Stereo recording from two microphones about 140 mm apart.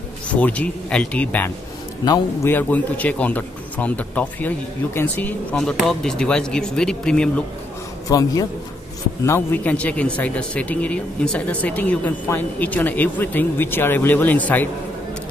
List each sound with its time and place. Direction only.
0.3 s speech: 10° left (ahead or behind)
8.1 s a man's voice: 25° left (ahead or behind)